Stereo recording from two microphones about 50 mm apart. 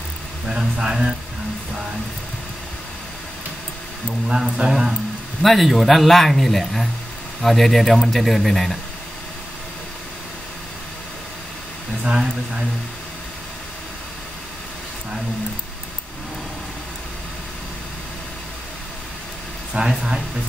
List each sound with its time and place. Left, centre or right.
0.5 s speech: centre
4.3 s a man's voice: centre
19.7 s speech: centre